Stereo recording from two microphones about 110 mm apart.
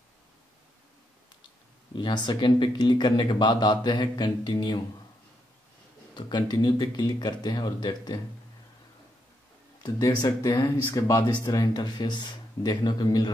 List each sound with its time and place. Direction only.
2.0 s speech: 45° left (ahead or behind)
6.1 s speech: 45° left (ahead or behind)
9.8 s speech: 35° left (ahead or behind)